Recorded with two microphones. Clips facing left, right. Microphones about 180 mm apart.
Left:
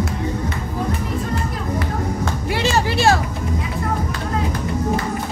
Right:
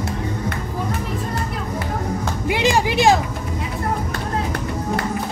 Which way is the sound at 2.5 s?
15° right (ahead or behind).